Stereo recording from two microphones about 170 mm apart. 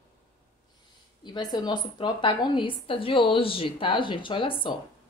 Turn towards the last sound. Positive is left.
turn(degrees=30)  # may be behind; listen again after turning